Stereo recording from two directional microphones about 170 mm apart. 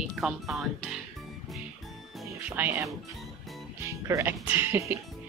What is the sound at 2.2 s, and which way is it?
Music, 10° right (ahead or behind).